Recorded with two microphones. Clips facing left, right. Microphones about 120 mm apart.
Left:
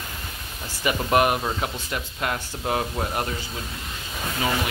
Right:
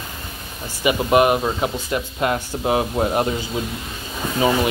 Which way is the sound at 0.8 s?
15° right (ahead or behind).